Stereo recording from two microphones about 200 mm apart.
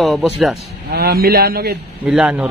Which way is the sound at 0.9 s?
50° right (ahead or behind).